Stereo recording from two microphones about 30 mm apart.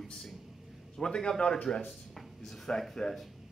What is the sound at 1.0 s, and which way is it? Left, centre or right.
Speech, left.